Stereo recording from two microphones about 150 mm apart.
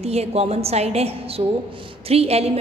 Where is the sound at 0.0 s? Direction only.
45° right (ahead or behind).